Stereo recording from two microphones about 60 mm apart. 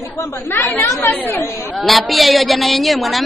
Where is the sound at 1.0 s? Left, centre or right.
Left.